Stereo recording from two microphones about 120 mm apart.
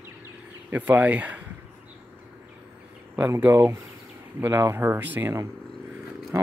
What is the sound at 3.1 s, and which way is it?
Speech, 20° right (ahead or behind).